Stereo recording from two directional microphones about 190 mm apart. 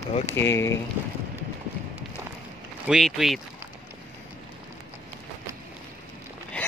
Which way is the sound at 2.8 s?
Centre (ahead or behind).